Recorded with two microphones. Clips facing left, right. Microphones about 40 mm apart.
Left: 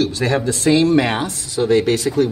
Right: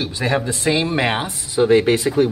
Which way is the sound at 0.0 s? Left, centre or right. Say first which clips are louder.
Left 3 dB; centre.